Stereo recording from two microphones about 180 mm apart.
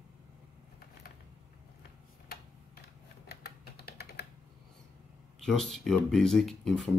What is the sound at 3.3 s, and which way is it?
Typing, 65° left (ahead or behind).